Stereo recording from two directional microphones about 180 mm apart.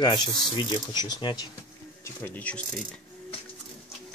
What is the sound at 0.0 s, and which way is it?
Speech, 25° left (ahead or behind).